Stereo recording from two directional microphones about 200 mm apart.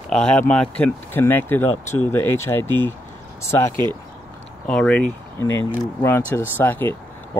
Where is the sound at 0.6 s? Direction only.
10° left (ahead or behind).